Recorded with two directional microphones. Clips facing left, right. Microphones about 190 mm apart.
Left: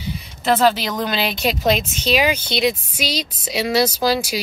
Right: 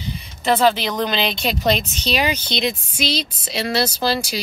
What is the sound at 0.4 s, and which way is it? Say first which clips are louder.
Speech: even; 5° left (ahead or behind).